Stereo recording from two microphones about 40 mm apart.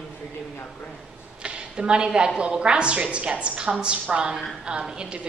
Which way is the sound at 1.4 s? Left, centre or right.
Right.